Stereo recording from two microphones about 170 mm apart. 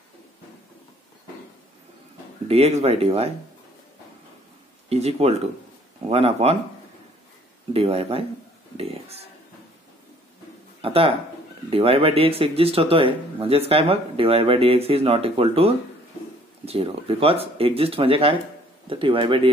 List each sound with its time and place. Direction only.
2.4 s speech: 40° right (ahead or behind)
4.8 s speech: 40° right (ahead or behind)
7.7 s speech: 35° right (ahead or behind)
8.7 s a sound: 35° right (ahead or behind)
10.8 s speech: 35° right (ahead or behind)